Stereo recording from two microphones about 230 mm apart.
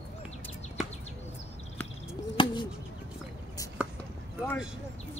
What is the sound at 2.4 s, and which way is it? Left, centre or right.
Bird, left.